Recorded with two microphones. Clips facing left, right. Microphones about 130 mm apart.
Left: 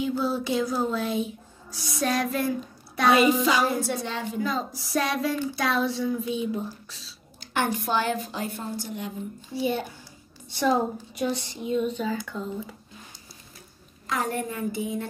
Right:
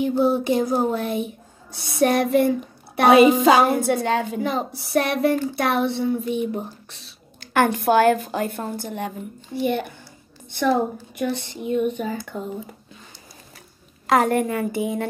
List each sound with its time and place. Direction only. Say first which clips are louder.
0.0 s a woman's voice: right 7 dB; 60° right (ahead or behind)
14.0 s a woman's voice: right 10 dB; 75° right (ahead or behind)